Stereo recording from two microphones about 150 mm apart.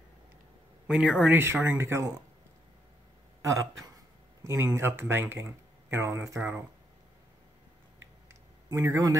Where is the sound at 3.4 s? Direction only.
20° right (ahead or behind).